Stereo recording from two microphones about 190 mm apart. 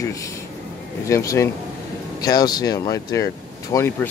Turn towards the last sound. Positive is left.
turn(degrees=10)  # may be behind; listen again after turning